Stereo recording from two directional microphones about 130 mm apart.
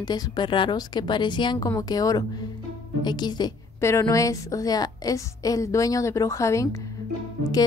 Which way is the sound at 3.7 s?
20° left (ahead or behind).